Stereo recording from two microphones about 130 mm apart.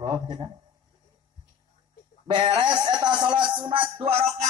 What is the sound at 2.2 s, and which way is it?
Speech, 35° right (ahead or behind).